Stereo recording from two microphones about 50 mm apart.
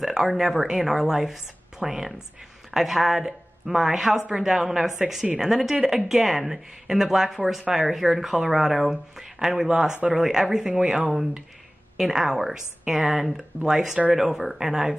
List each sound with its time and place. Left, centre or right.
0.0 s speech: centre
10.1 s speech: centre
11.1 s speech: centre